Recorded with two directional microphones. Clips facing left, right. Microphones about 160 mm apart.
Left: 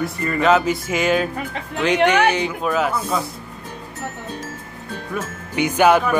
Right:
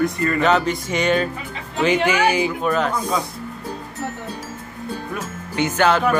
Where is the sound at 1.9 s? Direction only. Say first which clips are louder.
Left 6 dB; 65° left (ahead or behind).